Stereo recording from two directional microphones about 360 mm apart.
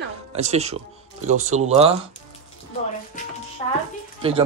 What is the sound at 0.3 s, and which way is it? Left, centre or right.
Speech, centre.